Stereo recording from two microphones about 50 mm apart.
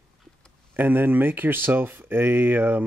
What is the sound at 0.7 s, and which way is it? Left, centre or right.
Speech, right.